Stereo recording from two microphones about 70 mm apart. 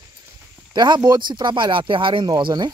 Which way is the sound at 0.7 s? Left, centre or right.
Right.